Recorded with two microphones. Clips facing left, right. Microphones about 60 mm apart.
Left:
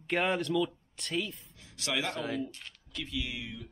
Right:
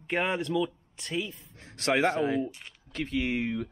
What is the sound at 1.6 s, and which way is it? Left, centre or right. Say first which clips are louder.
Speech: right 9 dB; right.